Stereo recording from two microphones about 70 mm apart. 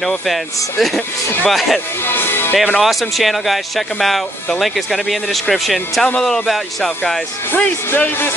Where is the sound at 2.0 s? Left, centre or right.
Left.